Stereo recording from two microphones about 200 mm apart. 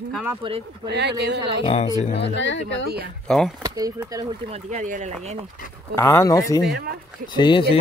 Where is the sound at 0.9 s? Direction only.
60° right (ahead or behind).